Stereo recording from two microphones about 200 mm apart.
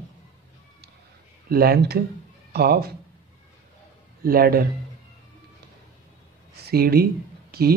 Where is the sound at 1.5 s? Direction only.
50° right (ahead or behind).